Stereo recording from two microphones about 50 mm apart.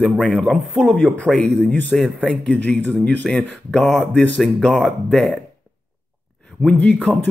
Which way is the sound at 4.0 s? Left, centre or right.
Centre.